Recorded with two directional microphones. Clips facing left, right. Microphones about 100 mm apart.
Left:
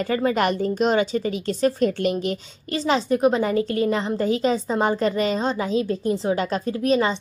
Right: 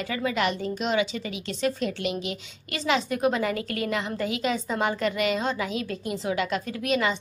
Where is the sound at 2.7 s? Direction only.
35° left (ahead or behind).